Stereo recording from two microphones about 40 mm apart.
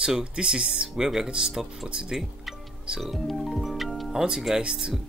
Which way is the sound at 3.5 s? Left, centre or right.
Centre.